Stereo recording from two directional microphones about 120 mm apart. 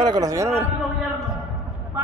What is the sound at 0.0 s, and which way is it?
Speech, 35° right (ahead or behind).